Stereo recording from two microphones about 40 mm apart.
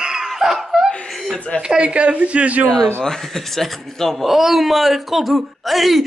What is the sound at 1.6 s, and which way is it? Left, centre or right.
Speech, right.